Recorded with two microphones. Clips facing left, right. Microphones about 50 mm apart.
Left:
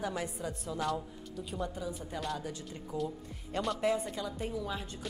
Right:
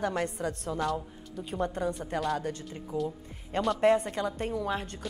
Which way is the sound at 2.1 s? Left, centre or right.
Right.